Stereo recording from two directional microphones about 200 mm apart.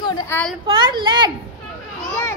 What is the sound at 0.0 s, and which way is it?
Speech, 20° left (ahead or behind).